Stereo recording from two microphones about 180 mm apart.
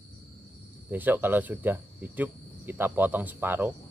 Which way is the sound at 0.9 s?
10° right (ahead or behind).